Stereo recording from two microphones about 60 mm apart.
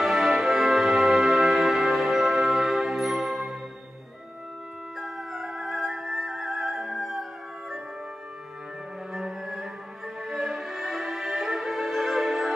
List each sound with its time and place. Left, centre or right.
0.0 s music: centre
5.0 s music: centre
9.1 s music: centre